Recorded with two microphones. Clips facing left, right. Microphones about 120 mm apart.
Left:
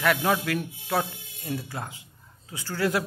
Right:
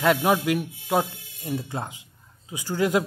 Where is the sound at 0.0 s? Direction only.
20° right (ahead or behind).